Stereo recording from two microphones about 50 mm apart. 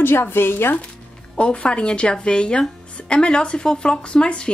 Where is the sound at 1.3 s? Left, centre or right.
Left.